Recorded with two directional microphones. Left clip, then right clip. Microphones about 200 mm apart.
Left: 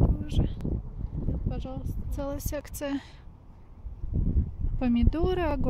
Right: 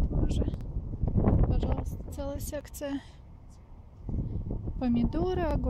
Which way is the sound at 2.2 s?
20° left (ahead or behind).